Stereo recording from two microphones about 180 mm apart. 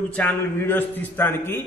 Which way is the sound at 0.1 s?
10° left (ahead or behind).